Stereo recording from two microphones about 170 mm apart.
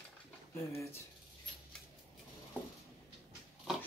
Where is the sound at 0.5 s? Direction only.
15° left (ahead or behind).